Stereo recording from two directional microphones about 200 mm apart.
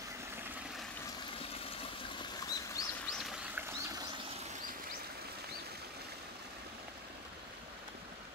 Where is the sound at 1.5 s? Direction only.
30° left (ahead or behind).